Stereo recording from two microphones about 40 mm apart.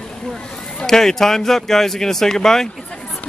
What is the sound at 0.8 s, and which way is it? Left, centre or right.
Speech, centre.